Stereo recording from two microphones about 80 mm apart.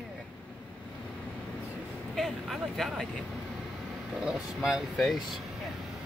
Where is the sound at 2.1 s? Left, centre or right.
Centre.